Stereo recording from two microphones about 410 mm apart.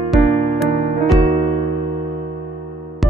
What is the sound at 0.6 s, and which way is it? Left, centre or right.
Music, centre.